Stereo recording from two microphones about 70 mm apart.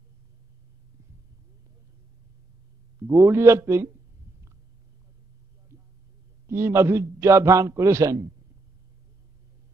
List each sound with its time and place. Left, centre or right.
3.0 s a man's voice: right
6.4 s a man's voice: right